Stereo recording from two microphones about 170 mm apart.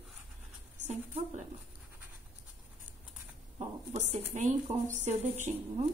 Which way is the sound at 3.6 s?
40° right (ahead or behind).